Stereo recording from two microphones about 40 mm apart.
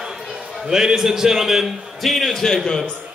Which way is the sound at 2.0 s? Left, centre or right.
Centre.